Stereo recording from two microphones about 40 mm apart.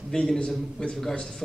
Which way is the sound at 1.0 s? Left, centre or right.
Centre.